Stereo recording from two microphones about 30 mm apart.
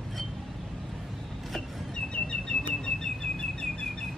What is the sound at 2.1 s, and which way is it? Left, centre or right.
Bird, left.